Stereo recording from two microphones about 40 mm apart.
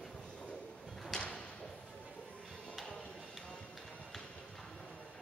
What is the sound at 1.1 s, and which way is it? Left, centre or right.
Thump, centre.